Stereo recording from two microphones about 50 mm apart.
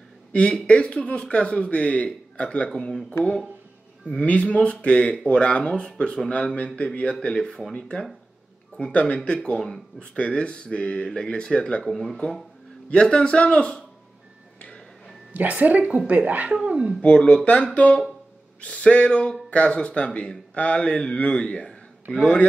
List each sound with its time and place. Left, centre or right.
0.3 s speech: left
4.2 s speech: left
11.8 s speech: centre
12.9 s speech: centre
15.3 s a woman's voice: right
17.0 s speech: left
18.6 s speech: left